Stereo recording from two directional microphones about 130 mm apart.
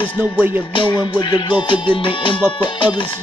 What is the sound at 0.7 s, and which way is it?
Music, 35° left (ahead or behind).